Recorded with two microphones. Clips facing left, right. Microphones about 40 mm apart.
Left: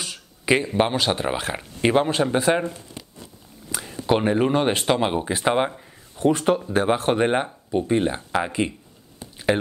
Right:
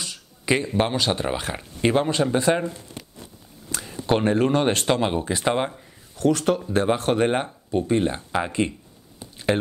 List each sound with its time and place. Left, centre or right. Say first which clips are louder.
0.0 s speech: left 2 dB; centre
3.7 s speech: left 1 dB; centre
6.6 s speech: left 1 dB; centre